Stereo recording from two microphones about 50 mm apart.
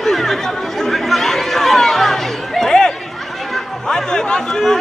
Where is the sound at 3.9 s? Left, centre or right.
Centre.